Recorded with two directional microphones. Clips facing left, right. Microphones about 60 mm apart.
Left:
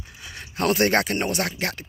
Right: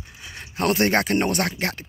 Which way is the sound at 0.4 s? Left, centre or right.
Right.